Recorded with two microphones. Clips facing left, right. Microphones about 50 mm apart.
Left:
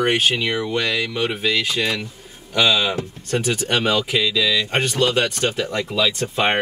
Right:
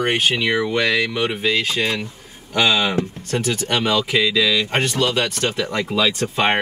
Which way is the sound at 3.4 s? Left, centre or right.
Centre.